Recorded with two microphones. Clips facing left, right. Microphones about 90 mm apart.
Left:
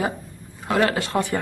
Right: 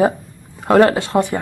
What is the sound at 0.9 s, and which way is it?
Speech, 20° right (ahead or behind).